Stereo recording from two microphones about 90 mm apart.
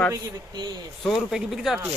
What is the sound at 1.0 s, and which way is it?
Speech, centre (ahead or behind).